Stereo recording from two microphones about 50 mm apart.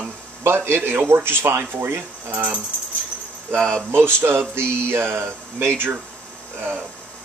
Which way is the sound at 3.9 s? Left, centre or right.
Right.